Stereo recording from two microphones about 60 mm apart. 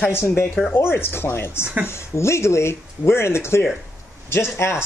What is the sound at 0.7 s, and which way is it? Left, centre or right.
Speech, left.